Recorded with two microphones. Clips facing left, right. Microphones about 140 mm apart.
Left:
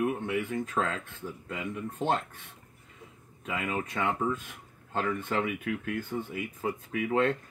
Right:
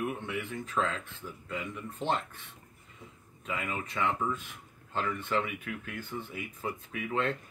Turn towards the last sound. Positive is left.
turn(degrees=45)  # may be behind; listen again after turning